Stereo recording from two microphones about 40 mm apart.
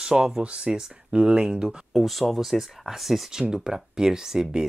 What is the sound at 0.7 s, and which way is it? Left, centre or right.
Speech, centre.